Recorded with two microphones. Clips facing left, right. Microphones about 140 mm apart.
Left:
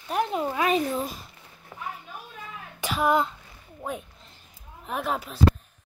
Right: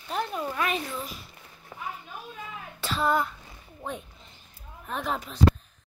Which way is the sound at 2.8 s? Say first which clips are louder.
Left 3 dB; 15° left (ahead or behind).